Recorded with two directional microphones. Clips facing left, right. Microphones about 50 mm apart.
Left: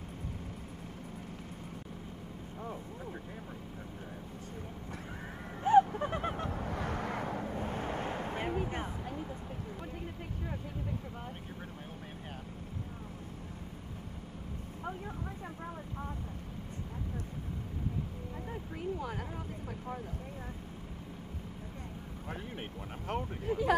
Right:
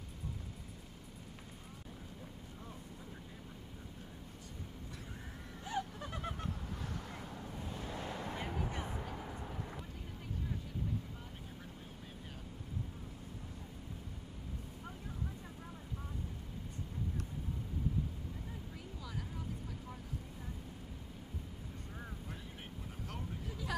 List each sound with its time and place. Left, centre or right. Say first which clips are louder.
5.6 s owl: left 16 dB; left
18.5 s vehicle: left 11 dB; left
22.3 s vehicle: left 7 dB; left